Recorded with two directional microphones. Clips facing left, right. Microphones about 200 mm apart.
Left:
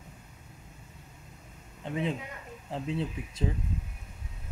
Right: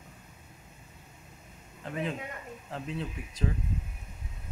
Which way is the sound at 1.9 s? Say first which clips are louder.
Left 2 dB; 25° left (ahead or behind).